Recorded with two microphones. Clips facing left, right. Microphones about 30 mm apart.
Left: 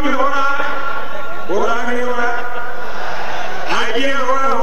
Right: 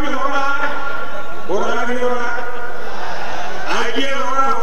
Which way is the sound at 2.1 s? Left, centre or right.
Centre.